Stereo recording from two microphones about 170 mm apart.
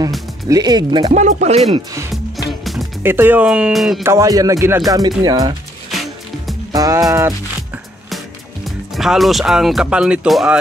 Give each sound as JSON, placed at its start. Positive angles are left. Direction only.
{"t": 0.5, "sound": "speech", "side_deg": -25}
{"t": 1.1, "sound": "speech", "side_deg": -45}
{"t": 2.6, "sound": "music", "side_deg": 0}
{"t": 3.0, "sound": "speech", "side_deg": -10}
{"t": 4.0, "sound": "speech", "side_deg": -15}
{"t": 6.7, "sound": "music", "side_deg": -20}
{"t": 8.6, "sound": "speech", "side_deg": 0}